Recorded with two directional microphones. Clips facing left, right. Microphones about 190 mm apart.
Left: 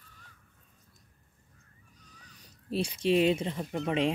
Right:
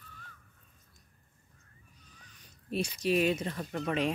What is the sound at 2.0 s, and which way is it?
Speech, 35° left (ahead or behind).